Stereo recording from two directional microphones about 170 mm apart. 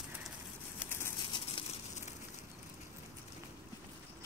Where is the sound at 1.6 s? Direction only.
30° left (ahead or behind).